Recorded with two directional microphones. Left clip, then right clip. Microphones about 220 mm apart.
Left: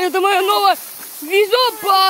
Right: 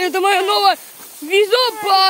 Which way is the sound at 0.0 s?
10° right (ahead or behind).